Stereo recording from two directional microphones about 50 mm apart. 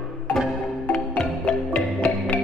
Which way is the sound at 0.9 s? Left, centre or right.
Centre.